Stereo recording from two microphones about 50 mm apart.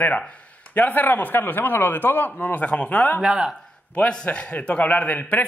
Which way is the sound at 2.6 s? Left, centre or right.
Left.